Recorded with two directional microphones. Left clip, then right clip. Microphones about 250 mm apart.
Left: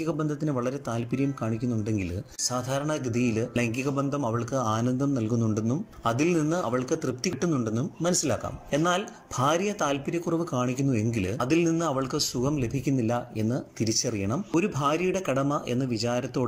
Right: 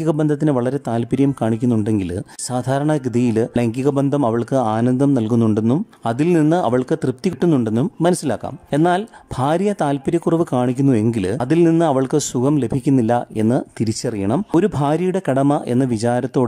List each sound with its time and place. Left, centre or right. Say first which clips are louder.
0.0 s speech: right 11 dB; right